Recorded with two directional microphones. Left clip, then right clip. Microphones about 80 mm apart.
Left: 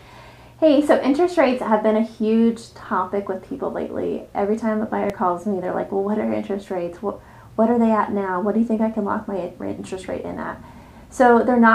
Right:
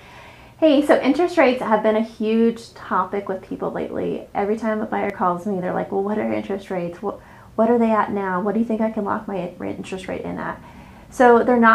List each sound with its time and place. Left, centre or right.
0.6 s a woman's voice: centre
3.1 s speech: centre
3.7 s a woman's voice: centre
4.7 s speech: centre
5.3 s a woman's voice: centre
5.6 s a woman's voice: centre
7.1 s a sound: centre
7.8 s speech: centre
9.7 s a woman's voice: centre